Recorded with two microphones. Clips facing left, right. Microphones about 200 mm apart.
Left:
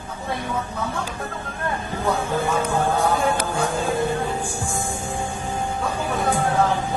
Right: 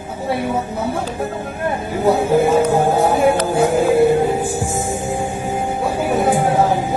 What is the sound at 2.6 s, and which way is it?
Speech, 35° right (ahead or behind).